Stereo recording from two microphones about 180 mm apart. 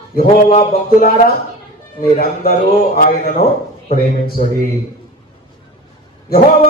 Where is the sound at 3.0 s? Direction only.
55° left (ahead or behind).